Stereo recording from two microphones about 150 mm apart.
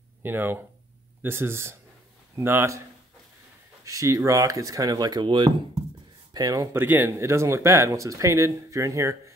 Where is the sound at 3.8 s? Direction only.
20° right (ahead or behind).